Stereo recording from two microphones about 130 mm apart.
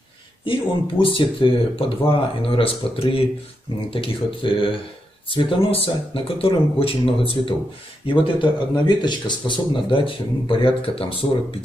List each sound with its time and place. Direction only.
0.5 s speech: 40° left (ahead or behind)